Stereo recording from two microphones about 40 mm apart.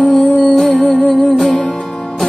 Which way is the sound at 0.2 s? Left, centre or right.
Left.